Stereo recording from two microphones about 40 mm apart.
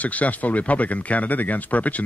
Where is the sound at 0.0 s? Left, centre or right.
Left.